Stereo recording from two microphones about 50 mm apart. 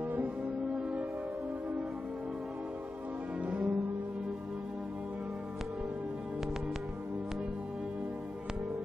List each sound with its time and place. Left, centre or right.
3.3 s music: right